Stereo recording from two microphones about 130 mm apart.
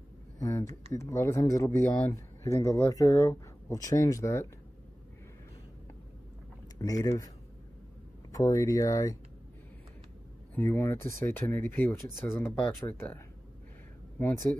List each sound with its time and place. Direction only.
0.4 s a sound: 25° left (ahead or behind)
0.9 s speech: 20° left (ahead or behind)
6.8 s speech: 25° left (ahead or behind)
8.3 s speech: 25° left (ahead or behind)
10.5 s speech: 15° left (ahead or behind)